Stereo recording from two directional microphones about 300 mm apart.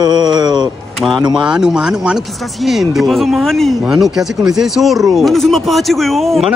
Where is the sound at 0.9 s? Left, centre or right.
Centre.